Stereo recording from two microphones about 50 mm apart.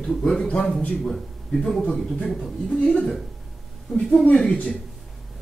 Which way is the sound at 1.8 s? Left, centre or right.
Centre.